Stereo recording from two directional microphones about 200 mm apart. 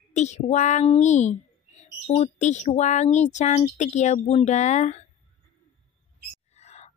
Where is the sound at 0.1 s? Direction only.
35° left (ahead or behind).